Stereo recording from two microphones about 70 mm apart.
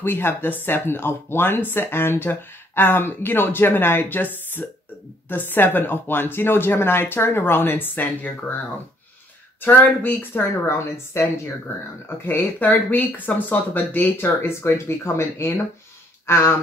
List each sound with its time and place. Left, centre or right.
0.0 s speech: left
9.6 s speech: left